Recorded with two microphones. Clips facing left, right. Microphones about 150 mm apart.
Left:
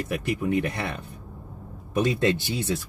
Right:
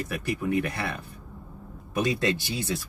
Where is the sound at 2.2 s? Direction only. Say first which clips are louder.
Left 3 dB; 25° left (ahead or behind).